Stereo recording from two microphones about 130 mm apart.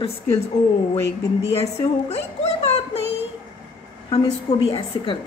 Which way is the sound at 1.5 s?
50° left (ahead or behind).